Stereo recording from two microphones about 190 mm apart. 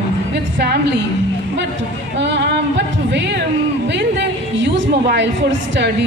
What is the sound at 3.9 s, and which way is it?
A woman's voice, 70° right (ahead or behind).